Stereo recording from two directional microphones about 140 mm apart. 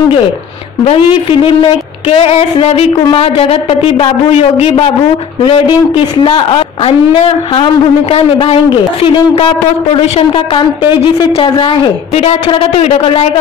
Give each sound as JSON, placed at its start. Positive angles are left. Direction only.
{"t": 1.4, "sound": "a man's voice", "side_deg": 40}